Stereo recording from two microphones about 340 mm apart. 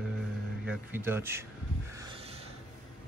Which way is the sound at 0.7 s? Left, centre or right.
Centre.